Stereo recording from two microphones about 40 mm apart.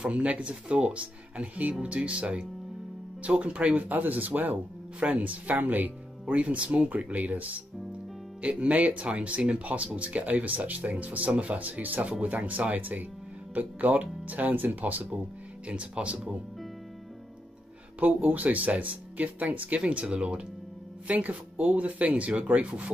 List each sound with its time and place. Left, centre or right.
0.1 s speech: right
15.6 s speech: right
18.0 s speech: right
21.1 s speech: right